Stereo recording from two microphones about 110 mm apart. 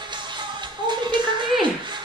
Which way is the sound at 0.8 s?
45° right (ahead or behind).